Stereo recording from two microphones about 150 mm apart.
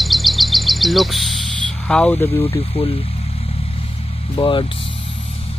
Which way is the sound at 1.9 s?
5° left (ahead or behind).